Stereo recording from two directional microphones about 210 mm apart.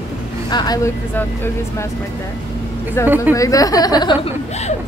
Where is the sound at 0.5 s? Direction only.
20° left (ahead or behind).